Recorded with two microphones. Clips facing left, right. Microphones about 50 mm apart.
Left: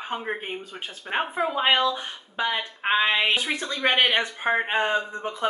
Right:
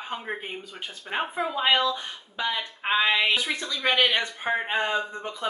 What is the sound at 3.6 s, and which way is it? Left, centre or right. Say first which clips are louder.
Speech: left 1 dB; left.